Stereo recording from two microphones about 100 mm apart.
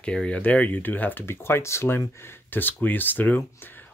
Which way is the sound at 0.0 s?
10° left (ahead or behind).